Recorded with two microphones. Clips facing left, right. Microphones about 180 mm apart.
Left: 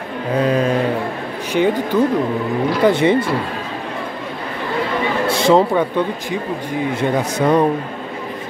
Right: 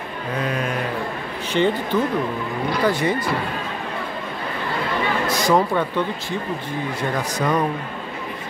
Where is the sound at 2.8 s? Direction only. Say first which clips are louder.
Left 7 dB; 25° left (ahead or behind).